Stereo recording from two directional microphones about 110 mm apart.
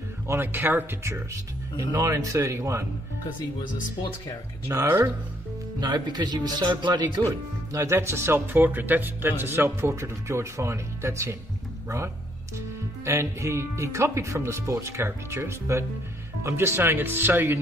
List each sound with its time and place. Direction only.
0.3 s speech: 20° right (ahead or behind)
4.7 s speech: 20° right (ahead or behind)
5.8 s speech: 40° right (ahead or behind)
12.5 s speech: 25° right (ahead or behind)